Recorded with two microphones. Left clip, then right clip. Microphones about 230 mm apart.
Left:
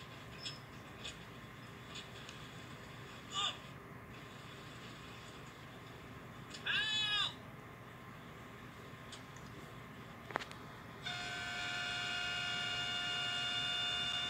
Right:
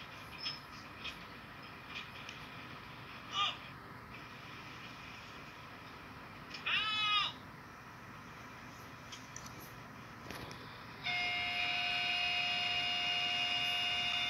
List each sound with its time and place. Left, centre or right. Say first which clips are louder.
3.3 s vehicle: right 3 dB; centre
6.5 s goat: right 1 dB; centre
11.1 s a sound: right 7 dB; centre